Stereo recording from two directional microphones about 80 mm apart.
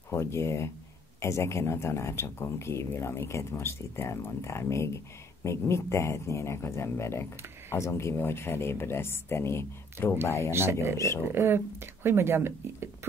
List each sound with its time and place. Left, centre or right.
0.1 s speech: left
10.5 s speech: right